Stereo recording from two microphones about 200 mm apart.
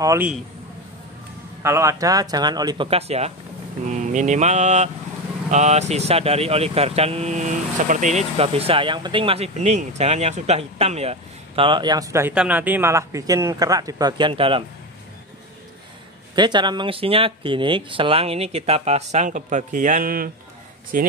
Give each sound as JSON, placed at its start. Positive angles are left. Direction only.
{"t": 0.0, "sound": "a man's voice", "side_deg": -15}
{"t": 1.6, "sound": "speech", "side_deg": -15}
{"t": 3.8, "sound": "mantra", "side_deg": -35}
{"t": 5.5, "sound": "speech", "side_deg": -35}
{"t": 16.3, "sound": "speech", "side_deg": -20}